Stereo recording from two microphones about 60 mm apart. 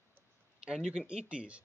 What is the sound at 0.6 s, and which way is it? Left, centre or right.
Speech, centre.